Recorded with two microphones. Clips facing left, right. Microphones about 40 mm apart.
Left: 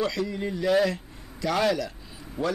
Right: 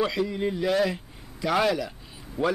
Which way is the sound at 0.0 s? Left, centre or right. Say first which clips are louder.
Right 2 dB; centre.